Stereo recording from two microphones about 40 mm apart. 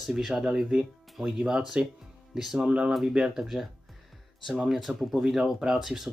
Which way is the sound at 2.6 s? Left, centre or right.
Right.